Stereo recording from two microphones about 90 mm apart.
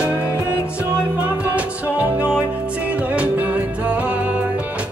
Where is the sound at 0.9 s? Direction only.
15° right (ahead or behind).